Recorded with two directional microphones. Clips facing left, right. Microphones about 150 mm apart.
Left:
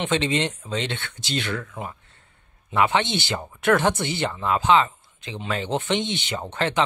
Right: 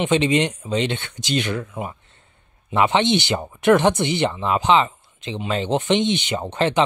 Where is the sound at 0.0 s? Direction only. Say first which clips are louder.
Right 5 dB; 15° right (ahead or behind).